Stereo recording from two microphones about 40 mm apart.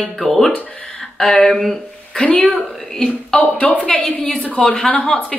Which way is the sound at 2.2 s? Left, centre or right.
Left.